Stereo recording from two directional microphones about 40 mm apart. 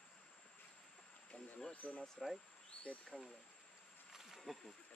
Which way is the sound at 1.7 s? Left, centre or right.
Left.